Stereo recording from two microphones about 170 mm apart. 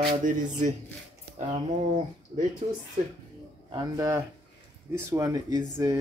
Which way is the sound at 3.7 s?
20° right (ahead or behind).